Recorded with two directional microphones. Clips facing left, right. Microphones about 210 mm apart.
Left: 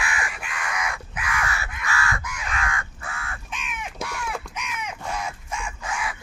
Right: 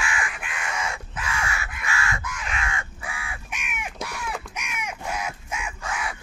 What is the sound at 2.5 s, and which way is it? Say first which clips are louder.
Crow: left 3 dB; 25° right (ahead or behind).